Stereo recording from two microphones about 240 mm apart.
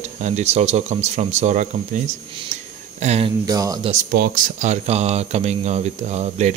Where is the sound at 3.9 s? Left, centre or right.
Right.